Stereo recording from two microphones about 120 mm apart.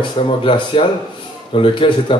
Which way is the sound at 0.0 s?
45° left (ahead or behind).